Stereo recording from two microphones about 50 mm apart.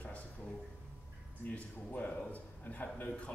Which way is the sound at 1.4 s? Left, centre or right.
Left.